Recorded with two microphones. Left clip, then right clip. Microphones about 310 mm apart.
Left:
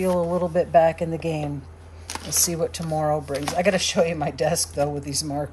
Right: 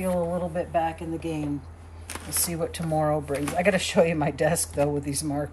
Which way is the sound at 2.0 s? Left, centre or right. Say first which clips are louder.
Left 8 dB; left.